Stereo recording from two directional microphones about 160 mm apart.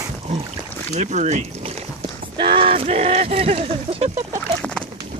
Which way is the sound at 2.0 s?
35° right (ahead or behind).